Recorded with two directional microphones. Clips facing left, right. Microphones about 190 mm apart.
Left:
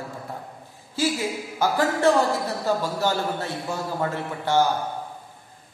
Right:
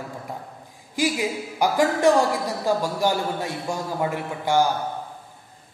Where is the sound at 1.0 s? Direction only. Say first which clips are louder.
Right 1 dB; 15° right (ahead or behind).